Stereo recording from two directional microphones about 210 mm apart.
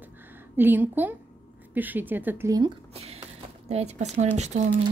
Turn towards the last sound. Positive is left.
turn(degrees=-35)  # may be behind; listen again after turning